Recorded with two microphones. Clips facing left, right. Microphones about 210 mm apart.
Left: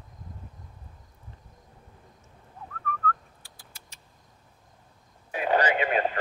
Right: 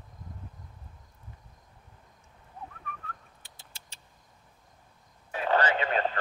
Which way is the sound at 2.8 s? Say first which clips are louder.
Left 12 dB; 20° right (ahead or behind).